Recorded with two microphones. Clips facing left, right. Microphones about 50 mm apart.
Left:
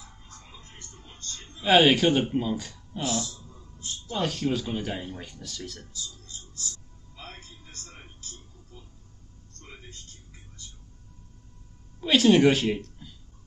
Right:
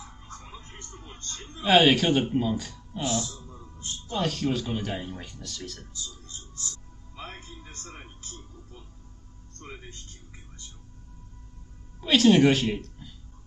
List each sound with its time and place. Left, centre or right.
0.5 s television: centre
1.0 s a sound: centre
1.6 s speech: centre
3.4 s music: right
4.1 s speech: centre
7.8 s music: centre
8.2 s a sound: right
12.0 s speech: centre